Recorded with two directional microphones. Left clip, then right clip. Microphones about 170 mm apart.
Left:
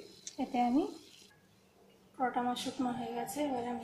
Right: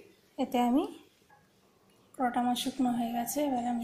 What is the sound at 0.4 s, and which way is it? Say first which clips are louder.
Speech: right 3 dB; 25° right (ahead or behind).